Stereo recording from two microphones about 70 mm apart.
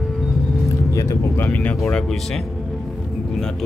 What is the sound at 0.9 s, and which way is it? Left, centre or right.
Vehicle, left.